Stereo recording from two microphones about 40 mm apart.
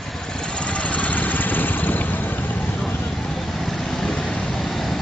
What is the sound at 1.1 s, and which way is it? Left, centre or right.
Vehicle, left.